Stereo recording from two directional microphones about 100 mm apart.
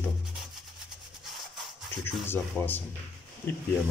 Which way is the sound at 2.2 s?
20° left (ahead or behind).